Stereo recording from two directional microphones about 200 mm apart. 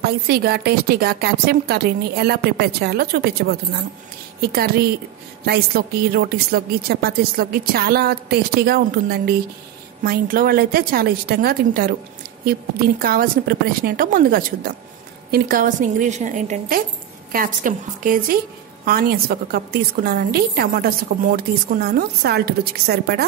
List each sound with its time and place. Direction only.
0.0 s a woman's voice: 50° right (ahead or behind)
13.0 s a woman's voice: 50° right (ahead or behind)